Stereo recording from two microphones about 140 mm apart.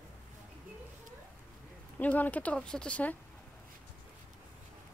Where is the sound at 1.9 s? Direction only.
10° left (ahead or behind).